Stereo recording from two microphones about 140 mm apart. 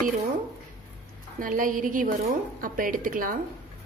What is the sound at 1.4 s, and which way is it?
Speech, 75° right (ahead or behind).